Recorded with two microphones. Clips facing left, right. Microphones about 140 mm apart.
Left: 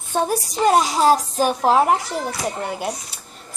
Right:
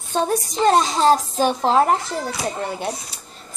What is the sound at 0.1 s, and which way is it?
A child's voice, 10° left (ahead or behind).